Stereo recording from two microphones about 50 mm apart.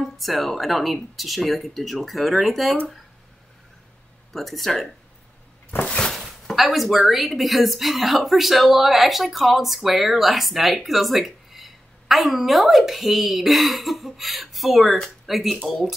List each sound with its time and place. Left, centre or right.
0.0 s speech: centre
4.3 s speech: centre
5.8 s a sound: centre
6.5 s speech: centre
15.7 s speech: centre